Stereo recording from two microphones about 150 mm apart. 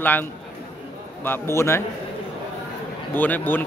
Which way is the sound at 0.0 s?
15° left (ahead or behind).